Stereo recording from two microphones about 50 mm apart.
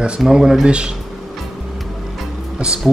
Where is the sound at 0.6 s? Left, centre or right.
Right.